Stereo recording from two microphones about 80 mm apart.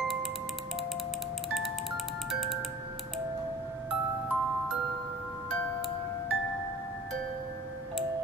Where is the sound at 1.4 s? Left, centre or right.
Centre.